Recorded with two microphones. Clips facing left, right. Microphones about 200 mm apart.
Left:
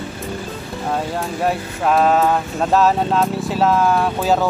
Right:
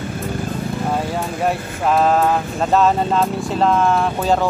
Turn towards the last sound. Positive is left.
turn(degrees=0)  # may be behind; listen again after turning